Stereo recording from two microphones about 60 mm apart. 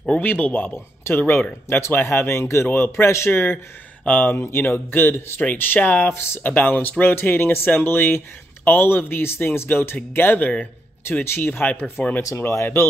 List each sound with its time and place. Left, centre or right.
0.2 s speech: left
1.0 s speech: left
6.0 s speech: left
6.4 s speech: left
10.2 s speech: left
11.1 s speech: left
12.4 s speech: left